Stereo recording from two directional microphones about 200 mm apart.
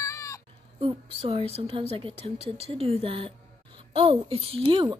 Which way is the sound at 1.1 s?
30° right (ahead or behind).